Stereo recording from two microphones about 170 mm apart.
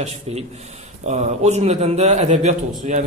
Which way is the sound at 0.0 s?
40° right (ahead or behind).